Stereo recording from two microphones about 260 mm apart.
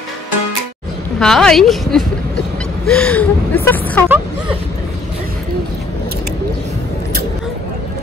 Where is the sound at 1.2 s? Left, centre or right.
Centre.